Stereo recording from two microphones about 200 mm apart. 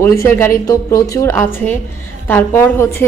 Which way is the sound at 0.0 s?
15° left (ahead or behind).